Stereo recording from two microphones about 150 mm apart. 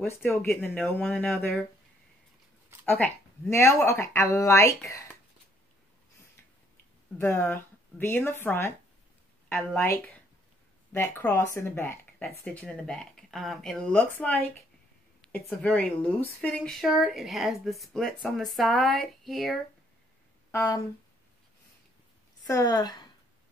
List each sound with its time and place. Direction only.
0.0 s speech: 15° left (ahead or behind)
2.9 s speech: 15° left (ahead or behind)
7.2 s a woman's voice: 15° left (ahead or behind)
20.5 s a woman's voice: 20° left (ahead or behind)
22.5 s a woman's voice: 25° left (ahead or behind)